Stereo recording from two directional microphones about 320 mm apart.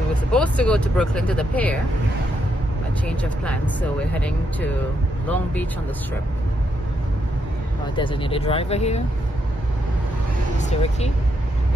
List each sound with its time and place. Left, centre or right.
0.1 s speech: centre
3.1 s speech: centre
7.9 s speech: centre
10.6 s speech: left